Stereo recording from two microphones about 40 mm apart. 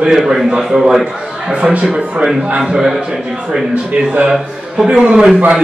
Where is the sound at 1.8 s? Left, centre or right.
Right.